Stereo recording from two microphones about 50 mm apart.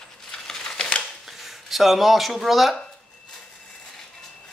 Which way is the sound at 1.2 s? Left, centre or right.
Centre.